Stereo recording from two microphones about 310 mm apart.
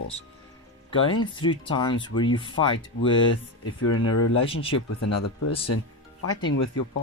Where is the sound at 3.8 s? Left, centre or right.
Left.